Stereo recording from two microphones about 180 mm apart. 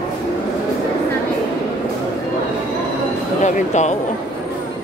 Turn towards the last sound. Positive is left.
turn(degrees=40)  # may be behind; listen again after turning